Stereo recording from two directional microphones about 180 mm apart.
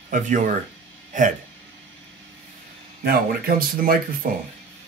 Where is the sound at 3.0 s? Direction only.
55° right (ahead or behind).